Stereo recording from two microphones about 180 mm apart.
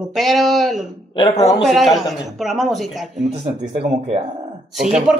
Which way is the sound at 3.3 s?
35° right (ahead or behind).